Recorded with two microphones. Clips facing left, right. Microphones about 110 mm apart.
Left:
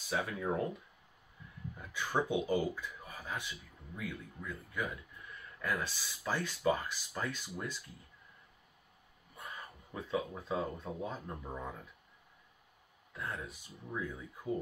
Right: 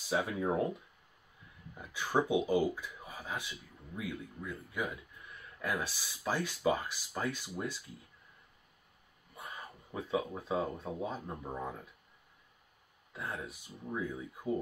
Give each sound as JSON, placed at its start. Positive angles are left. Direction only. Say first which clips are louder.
{"t": 0.1, "sound": "speech", "louder": "right 3 dB", "side_deg": -15}
{"t": 1.8, "sound": "speech", "louder": "right 3 dB", "side_deg": -10}
{"t": 9.9, "sound": "speech", "louder": "right 2 dB", "side_deg": -15}
{"t": 13.1, "sound": "speech", "louder": "right 1 dB", "side_deg": -15}